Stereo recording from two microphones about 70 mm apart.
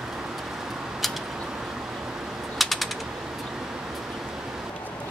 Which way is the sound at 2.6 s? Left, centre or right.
Centre.